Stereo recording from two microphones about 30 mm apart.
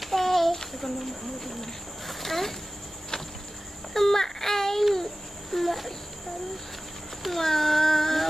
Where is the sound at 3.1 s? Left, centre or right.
Left.